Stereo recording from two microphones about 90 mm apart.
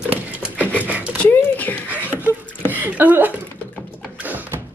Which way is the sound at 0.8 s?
15° right (ahead or behind).